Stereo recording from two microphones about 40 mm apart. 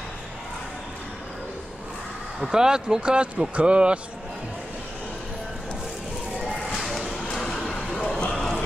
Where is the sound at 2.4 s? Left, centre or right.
Centre.